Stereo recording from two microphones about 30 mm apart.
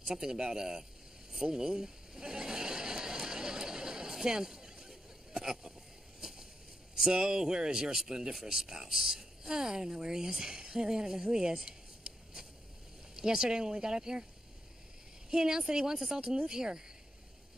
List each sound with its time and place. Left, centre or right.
0.0 s speech: centre
1.3 s a sound: centre
5.3 s speech: centre
7.0 s speech: centre
15.2 s speech: right